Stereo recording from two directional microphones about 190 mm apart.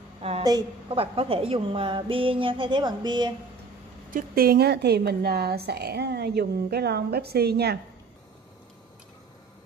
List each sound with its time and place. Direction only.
0.4 s a woman's voice: 20° right (ahead or behind)
4.1 s a woman's voice: 50° right (ahead or behind)